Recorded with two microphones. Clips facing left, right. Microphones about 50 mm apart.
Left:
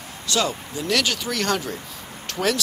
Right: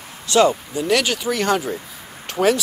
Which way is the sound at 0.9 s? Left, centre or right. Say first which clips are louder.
Right 4 dB; centre.